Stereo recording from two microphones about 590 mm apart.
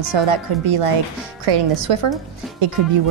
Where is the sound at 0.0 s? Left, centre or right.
Right.